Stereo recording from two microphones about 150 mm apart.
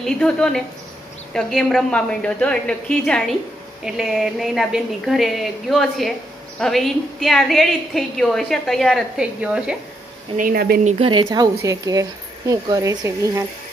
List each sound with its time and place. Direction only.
0.0 s a woman's voice: 5° left (ahead or behind)
10.3 s speech: 70° right (ahead or behind)
10.8 s speech: 50° right (ahead or behind)
11.2 s speech: 25° right (ahead or behind)